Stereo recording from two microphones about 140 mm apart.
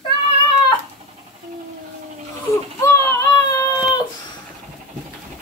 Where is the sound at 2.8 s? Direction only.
20° left (ahead or behind).